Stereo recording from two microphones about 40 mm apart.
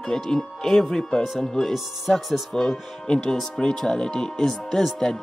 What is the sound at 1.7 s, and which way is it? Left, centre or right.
Speech, centre.